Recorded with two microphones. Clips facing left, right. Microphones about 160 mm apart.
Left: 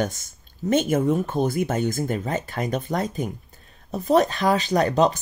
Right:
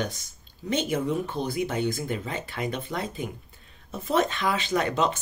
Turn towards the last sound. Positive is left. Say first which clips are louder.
# left 6 dB
turn(degrees=40)  # may be behind; listen again after turning